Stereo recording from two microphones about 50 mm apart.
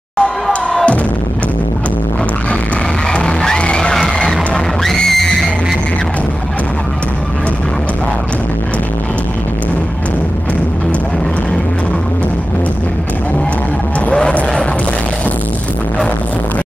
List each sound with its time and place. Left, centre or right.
0.2 s music: centre
3.1 s music: centre
14.1 s music: centre